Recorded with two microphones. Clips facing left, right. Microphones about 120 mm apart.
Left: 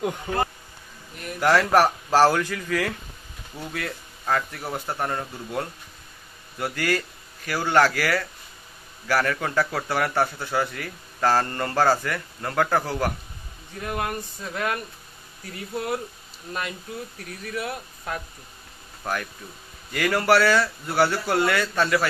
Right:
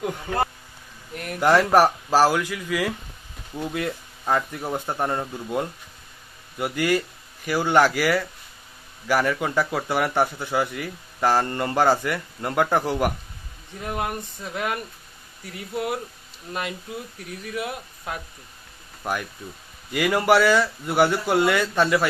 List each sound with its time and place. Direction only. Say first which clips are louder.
1.4 s a man's voice: right 2 dB; 15° right (ahead or behind)
17.2 s a man's voice: right 1 dB; 10° right (ahead or behind)